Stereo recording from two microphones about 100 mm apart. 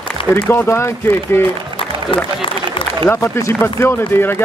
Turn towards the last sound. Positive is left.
turn(degrees=20)  # may be behind; listen again after turning